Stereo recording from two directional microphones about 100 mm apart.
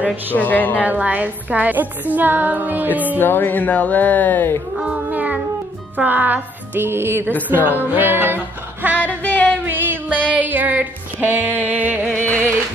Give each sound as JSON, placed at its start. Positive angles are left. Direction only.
{"t": 0.4, "sound": "speech", "side_deg": 15}
{"t": 0.8, "sound": "a woman's voice", "side_deg": -15}
{"t": 3.2, "sound": "speech", "side_deg": 20}
{"t": 4.7, "sound": "speech", "side_deg": -10}
{"t": 5.9, "sound": "music", "side_deg": -20}
{"t": 7.4, "sound": "a woman's voice", "side_deg": -20}
{"t": 7.9, "sound": "music", "side_deg": -20}
{"t": 8.9, "sound": "music", "side_deg": 15}
{"t": 9.7, "sound": "music", "side_deg": -20}
{"t": 10.3, "sound": "a woman's voice", "side_deg": -15}